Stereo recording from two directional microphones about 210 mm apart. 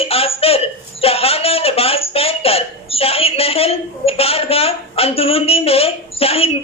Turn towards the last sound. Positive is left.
turn(degrees=30)  # may be behind; listen again after turning